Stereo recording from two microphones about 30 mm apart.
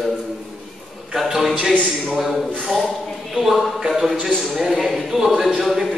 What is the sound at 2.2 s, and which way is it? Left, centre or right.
A man's voice, centre.